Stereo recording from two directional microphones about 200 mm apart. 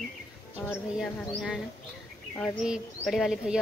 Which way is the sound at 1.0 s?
Centre (ahead or behind).